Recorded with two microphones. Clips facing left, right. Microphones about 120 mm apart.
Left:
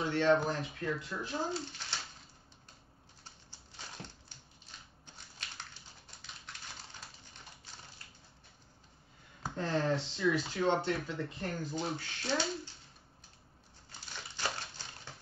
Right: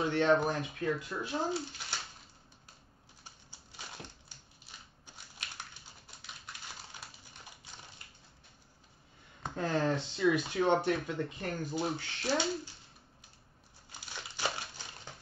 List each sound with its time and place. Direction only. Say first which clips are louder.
0.1 s speech: left 1 dB; 20° right (ahead or behind)
3.3 s typewriter: right 1 dB; 10° right (ahead or behind)
4.6 s a sound: right 1 dB; 10° right (ahead or behind)
9.6 s speech: right 1 dB; 15° right (ahead or behind)
13.9 s crumpling: right 2 dB; 15° right (ahead or behind)